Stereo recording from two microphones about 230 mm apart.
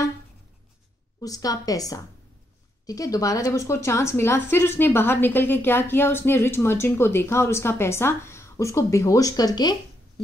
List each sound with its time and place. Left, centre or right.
1.2 s a woman's voice: centre